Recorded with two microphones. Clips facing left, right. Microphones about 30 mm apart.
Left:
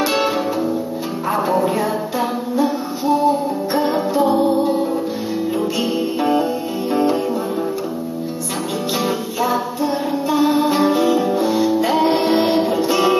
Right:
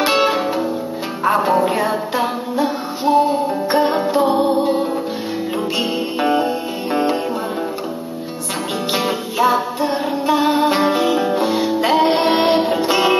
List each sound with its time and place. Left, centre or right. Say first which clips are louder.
0.1 s music: right 2 dB; right
8.9 s music: right 2 dB; right
9.8 s music: right 1 dB; right